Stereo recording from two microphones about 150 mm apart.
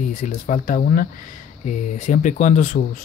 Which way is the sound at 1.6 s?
50° left (ahead or behind).